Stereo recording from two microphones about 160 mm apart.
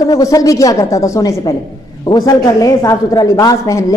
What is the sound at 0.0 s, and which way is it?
A woman's voice, 20° left (ahead or behind).